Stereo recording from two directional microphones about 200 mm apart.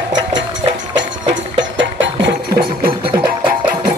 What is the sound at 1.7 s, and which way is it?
Music, 65° right (ahead or behind).